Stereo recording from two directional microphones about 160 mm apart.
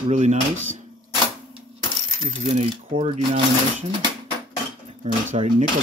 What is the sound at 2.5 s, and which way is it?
Speech, 45° right (ahead or behind).